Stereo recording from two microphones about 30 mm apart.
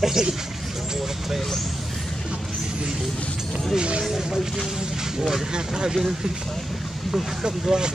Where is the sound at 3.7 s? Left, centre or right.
Right.